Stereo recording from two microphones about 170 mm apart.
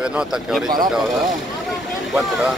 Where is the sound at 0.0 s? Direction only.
5° right (ahead or behind).